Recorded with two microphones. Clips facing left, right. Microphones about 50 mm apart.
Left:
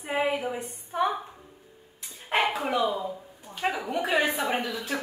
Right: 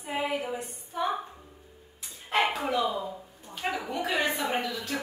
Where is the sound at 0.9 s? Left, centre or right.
Left.